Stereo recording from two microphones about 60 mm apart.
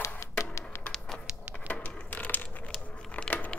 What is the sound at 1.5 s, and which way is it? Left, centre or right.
Crushing, left.